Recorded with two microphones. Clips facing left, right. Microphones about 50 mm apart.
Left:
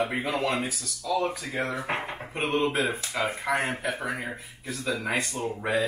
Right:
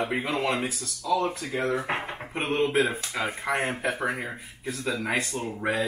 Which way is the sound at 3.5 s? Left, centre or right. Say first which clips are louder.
Even; centre.